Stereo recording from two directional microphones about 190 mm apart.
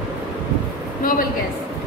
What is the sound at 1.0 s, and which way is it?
Speech, 50° left (ahead or behind).